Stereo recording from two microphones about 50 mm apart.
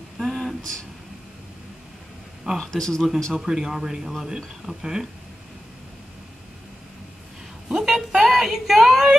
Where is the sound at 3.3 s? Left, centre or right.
Centre.